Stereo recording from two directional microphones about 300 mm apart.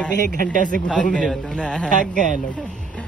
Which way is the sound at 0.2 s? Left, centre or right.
Right.